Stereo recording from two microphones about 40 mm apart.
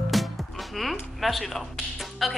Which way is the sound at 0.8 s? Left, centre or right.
Centre.